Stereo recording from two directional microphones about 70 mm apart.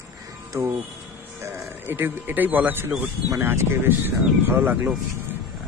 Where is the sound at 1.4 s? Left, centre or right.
Right.